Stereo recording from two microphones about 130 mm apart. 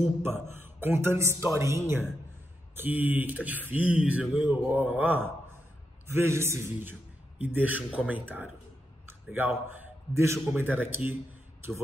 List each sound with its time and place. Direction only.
0.2 s a woman's voice: 15° right (ahead or behind)